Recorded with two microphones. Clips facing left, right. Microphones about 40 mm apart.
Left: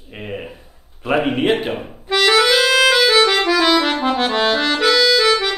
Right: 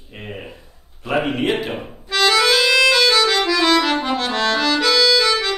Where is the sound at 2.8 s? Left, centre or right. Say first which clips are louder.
Left 2 dB; centre.